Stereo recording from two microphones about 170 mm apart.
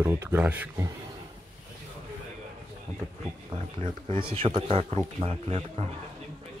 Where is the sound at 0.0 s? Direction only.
15° right (ahead or behind).